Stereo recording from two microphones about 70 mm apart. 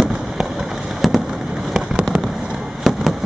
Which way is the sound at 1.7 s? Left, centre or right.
Centre.